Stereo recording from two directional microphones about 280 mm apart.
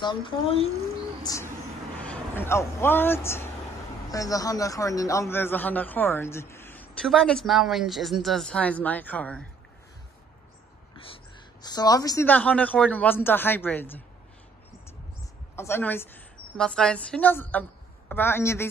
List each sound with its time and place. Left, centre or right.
0.0 s a man's voice: centre
1.2 s a sound: centre
2.0 s a man's voice: centre
11.6 s a man's voice: centre
15.5 s a woman's voice: centre